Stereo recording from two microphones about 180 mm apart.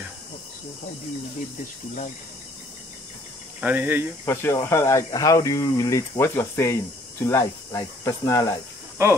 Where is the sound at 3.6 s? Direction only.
10° right (ahead or behind).